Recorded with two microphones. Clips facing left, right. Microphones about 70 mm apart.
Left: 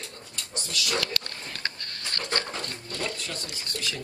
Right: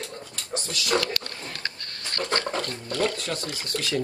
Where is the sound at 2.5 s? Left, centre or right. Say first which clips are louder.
Right 6 dB; right.